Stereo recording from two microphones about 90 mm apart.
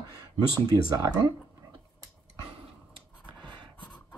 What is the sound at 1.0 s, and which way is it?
Speech, 35° right (ahead or behind).